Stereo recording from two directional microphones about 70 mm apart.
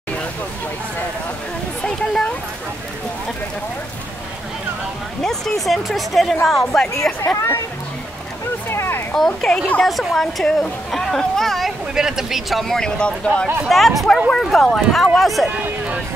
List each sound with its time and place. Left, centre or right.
1.8 s a sound: centre
5.2 s a woman's voice: centre
7.1 s speech: left
8.6 s a sound: left
9.1 s speech: centre
13.7 s speech: centre